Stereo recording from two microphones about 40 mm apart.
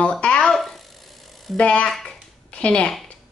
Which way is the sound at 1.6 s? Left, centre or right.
Left.